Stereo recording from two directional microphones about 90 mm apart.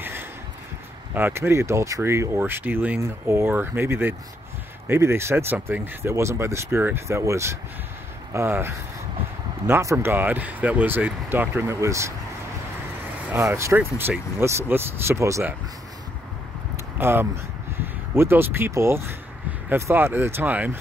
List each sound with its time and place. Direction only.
0.0 s a sound: 25° right (ahead or behind)
1.1 s speech: 25° right (ahead or behind)
13.3 s speech: 25° right (ahead or behind)
17.0 s speech: 25° right (ahead or behind)